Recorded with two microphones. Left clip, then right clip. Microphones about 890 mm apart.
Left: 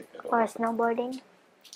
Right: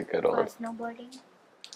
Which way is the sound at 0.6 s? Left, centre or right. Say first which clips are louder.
Left 9 dB; left.